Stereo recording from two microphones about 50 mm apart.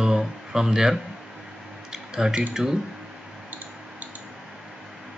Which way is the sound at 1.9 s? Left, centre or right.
Centre.